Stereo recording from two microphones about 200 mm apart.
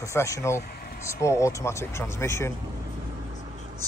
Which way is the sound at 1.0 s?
15° left (ahead or behind).